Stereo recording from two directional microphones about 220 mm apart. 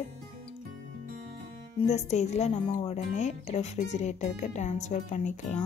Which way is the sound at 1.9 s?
30° left (ahead or behind).